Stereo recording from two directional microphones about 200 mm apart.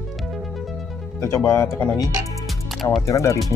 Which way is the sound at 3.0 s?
15° left (ahead or behind).